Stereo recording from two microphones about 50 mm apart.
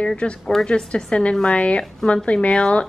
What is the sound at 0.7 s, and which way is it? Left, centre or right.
A woman's voice, centre.